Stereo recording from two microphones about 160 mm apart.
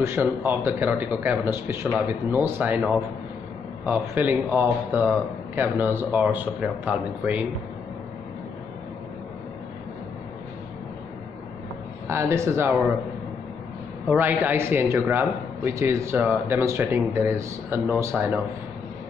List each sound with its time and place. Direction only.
0.0 s a man's voice: 15° right (ahead or behind)
12.1 s a man's voice: 15° right (ahead or behind)
14.1 s a man's voice: 10° right (ahead or behind)